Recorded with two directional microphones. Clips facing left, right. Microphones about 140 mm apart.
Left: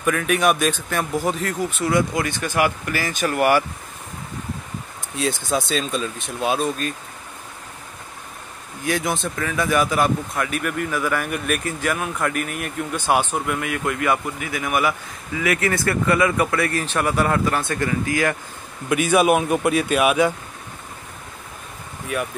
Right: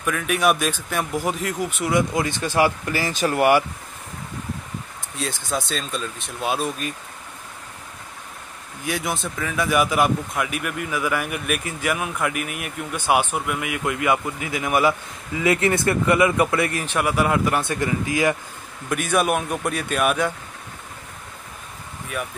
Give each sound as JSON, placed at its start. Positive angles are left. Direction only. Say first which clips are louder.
{"t": 0.0, "sound": "speech", "louder": "left 2 dB", "side_deg": 0}
{"t": 5.1, "sound": "speech", "louder": "left 4 dB", "side_deg": 0}
{"t": 8.8, "sound": "speech", "louder": "left 3 dB", "side_deg": -5}
{"t": 18.9, "sound": "speech", "louder": "left 4 dB", "side_deg": 5}